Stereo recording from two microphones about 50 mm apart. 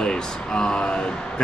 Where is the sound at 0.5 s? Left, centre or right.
Centre.